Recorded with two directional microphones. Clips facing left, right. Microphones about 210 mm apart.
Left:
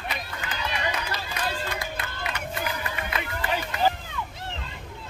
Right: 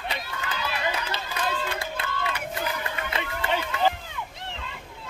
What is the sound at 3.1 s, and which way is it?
Run, 25° right (ahead or behind).